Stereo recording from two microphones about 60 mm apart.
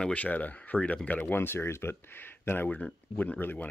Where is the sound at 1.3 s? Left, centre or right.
Left.